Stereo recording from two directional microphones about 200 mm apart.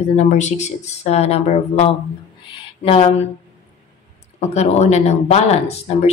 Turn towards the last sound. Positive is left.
turn(degrees=30)  # may be behind; listen again after turning